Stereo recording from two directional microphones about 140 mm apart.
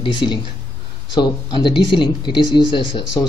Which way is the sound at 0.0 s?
35° left (ahead or behind).